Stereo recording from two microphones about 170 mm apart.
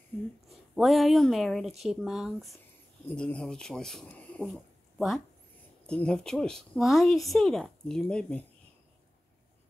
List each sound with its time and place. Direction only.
0.5 s a woman's voice: centre (ahead or behind)